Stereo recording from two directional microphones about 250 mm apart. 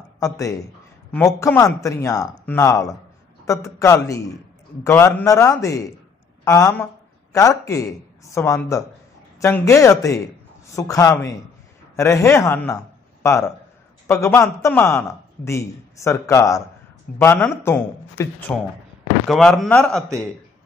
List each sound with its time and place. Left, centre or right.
0.2 s a man's voice: centre